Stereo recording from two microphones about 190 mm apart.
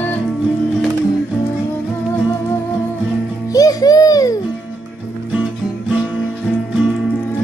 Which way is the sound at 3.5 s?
20° left (ahead or behind).